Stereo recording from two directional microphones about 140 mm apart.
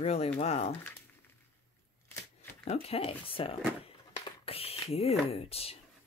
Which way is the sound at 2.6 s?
45° left (ahead or behind).